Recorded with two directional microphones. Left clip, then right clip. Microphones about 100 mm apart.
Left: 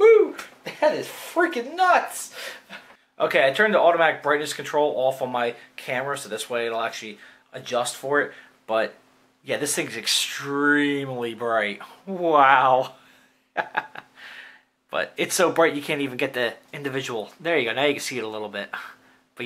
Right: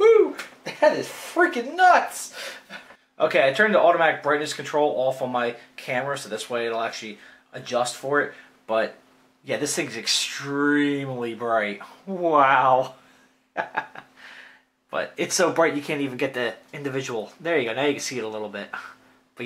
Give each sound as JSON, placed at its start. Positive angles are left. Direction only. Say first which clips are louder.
{"t": 0.7, "sound": "speech", "louder": "right 2 dB", "side_deg": 35}
{"t": 3.2, "sound": "speech", "louder": "even", "side_deg": 30}
{"t": 13.6, "sound": "a sound", "louder": "left 1 dB", "side_deg": 30}
{"t": 15.5, "sound": "speech", "louder": "left 1 dB", "side_deg": 30}